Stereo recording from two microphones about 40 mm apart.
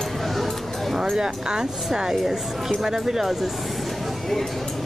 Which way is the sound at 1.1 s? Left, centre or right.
Centre.